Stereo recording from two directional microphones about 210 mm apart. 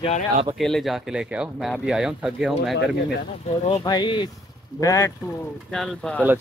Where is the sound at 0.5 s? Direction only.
Centre (ahead or behind).